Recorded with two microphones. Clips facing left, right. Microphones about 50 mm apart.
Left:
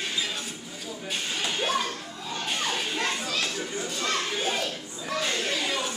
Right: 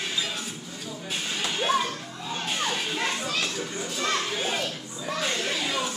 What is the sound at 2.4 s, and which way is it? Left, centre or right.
Children playing, centre.